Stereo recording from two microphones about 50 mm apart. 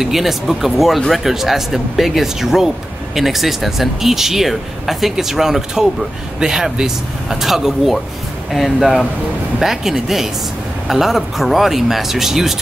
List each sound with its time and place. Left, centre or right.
0.0 s speech: centre